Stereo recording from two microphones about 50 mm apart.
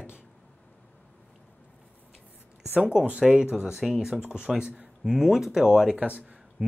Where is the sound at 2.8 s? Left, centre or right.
Right.